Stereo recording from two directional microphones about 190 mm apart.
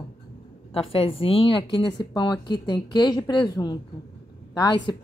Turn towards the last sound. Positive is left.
turn(degrees=20)  # may be behind; listen again after turning